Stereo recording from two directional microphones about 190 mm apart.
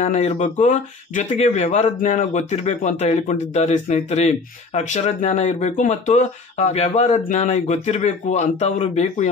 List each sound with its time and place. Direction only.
0.0 s speech: 35° left (ahead or behind)